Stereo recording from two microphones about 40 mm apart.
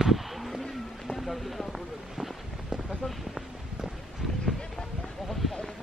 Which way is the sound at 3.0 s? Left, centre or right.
Centre.